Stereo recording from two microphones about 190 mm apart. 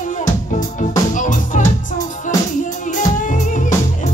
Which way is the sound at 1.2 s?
40° left (ahead or behind).